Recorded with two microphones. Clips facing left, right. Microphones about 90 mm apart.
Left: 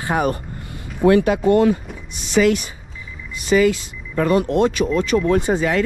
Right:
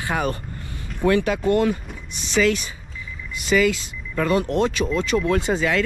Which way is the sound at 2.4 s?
35° left (ahead or behind).